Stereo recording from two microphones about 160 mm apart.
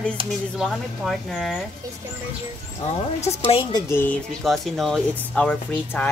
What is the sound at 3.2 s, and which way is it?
Speech, 40° left (ahead or behind).